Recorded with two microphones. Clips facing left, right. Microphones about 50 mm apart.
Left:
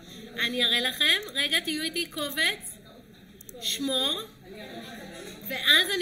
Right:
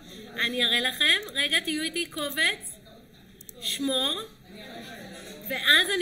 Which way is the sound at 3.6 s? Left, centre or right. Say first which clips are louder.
Right 1 dB; centre.